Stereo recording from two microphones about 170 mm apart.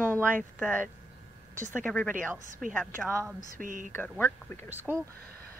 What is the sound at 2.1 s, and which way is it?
Speech, 50° right (ahead or behind).